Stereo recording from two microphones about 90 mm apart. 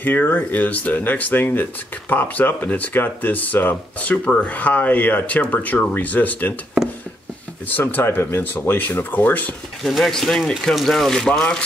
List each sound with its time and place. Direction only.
0.0 s speech: 20° left (ahead or behind)
7.7 s speech: 25° left (ahead or behind)
9.8 s speech: 5° left (ahead or behind)